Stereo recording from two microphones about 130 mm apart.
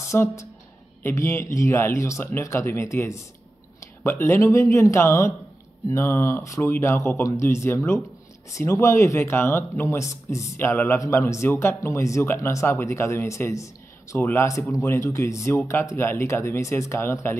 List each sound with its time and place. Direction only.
0.0 s speech: 20° left (ahead or behind)